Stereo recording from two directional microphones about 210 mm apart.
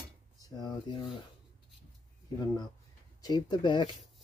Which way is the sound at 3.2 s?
20° left (ahead or behind).